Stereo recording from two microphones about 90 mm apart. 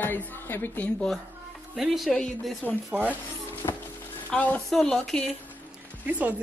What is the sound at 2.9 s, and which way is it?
Speech, 5° right (ahead or behind).